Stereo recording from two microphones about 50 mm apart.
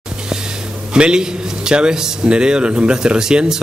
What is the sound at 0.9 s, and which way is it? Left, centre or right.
Speech, centre.